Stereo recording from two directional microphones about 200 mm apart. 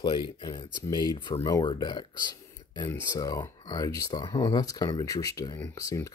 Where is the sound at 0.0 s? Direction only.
25° left (ahead or behind).